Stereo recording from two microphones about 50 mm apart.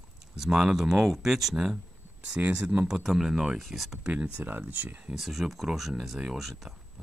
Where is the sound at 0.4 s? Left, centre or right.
Centre.